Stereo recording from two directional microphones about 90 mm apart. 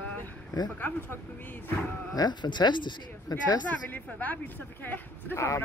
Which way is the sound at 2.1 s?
55° left (ahead or behind).